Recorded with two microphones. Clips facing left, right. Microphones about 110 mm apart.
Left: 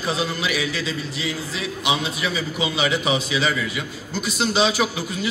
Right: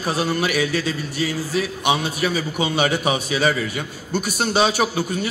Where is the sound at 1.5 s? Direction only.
50° right (ahead or behind).